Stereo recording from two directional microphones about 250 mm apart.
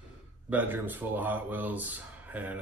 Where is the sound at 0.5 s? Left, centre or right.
Centre.